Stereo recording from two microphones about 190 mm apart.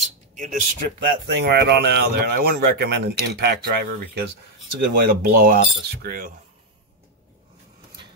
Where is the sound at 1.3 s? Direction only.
60° right (ahead or behind).